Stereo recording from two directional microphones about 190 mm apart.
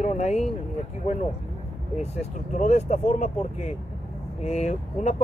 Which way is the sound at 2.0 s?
35° left (ahead or behind).